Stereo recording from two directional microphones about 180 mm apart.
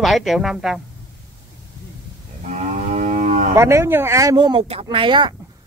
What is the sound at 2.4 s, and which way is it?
Moo, 40° right (ahead or behind).